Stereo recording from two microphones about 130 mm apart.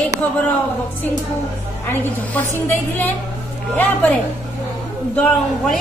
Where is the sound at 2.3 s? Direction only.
15° left (ahead or behind).